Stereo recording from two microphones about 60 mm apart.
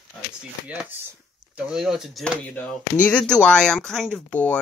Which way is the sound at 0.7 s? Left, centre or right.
Right.